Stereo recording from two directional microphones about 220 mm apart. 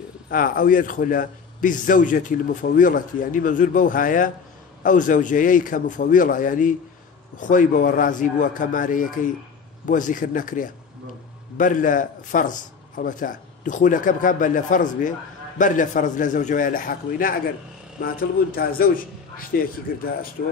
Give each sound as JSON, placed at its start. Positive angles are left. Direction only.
{"t": 0.3, "sound": "a man's voice", "side_deg": 40}